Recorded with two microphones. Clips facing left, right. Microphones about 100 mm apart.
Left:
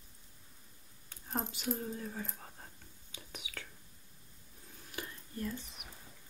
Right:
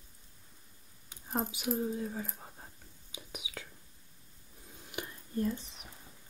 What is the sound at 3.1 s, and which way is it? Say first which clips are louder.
Whispering: right 3 dB; 15° right (ahead or behind).